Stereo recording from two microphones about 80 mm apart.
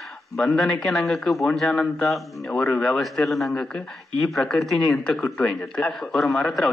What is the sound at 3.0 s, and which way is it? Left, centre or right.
A man's voice, centre.